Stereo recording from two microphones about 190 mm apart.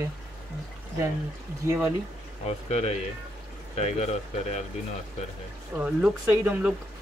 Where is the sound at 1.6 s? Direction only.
15° right (ahead or behind).